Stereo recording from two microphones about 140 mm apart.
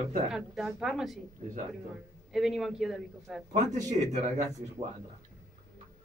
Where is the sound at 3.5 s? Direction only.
55° right (ahead or behind).